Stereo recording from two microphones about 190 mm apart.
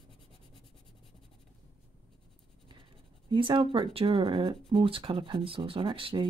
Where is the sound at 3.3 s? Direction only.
25° right (ahead or behind).